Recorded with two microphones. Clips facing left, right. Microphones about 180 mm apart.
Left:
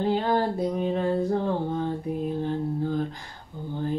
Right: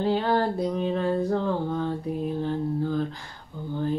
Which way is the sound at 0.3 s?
50° left (ahead or behind).